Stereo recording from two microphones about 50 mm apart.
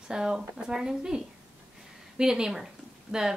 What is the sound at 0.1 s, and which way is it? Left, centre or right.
Speech, centre.